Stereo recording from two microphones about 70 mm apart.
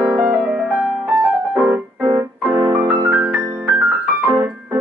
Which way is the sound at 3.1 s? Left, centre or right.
Right.